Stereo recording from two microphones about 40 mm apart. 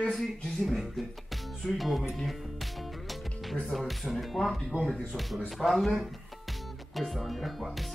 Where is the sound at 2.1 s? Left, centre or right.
Centre.